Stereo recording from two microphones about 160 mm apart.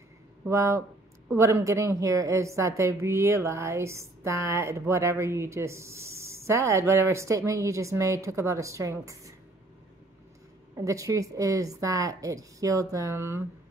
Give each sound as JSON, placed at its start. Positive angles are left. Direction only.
{"t": 0.5, "sound": "a woman's voice", "side_deg": -20}
{"t": 10.8, "sound": "a woman's voice", "side_deg": -20}